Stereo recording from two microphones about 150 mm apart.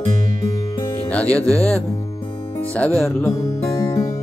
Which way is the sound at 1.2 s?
20° right (ahead or behind).